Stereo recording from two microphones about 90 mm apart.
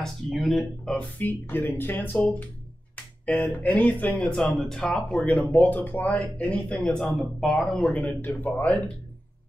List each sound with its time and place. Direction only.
0.0 s speech: centre (ahead or behind)
0.9 s speech: 20° left (ahead or behind)
3.3 s speech: 15° left (ahead or behind)
4.8 s speech: 15° left (ahead or behind)
7.3 s speech: centre (ahead or behind)